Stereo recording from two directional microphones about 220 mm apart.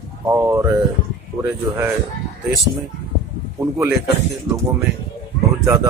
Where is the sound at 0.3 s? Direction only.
10° right (ahead or behind).